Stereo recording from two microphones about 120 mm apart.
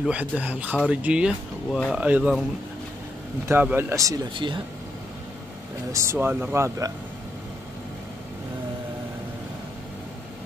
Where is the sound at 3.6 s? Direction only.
20° right (ahead or behind).